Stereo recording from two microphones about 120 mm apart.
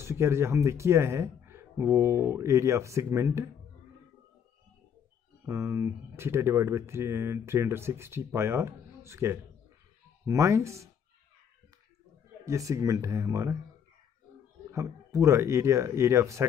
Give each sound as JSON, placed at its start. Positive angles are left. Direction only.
{"t": 0.0, "sound": "speech", "side_deg": -20}
{"t": 5.4, "sound": "speech", "side_deg": -20}
{"t": 12.4, "sound": "speech", "side_deg": -25}
{"t": 14.7, "sound": "speech", "side_deg": -25}